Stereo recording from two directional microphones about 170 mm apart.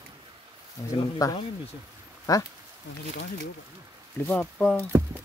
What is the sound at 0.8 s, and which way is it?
Speech, 20° left (ahead or behind).